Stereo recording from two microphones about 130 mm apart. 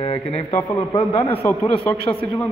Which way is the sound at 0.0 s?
50° left (ahead or behind).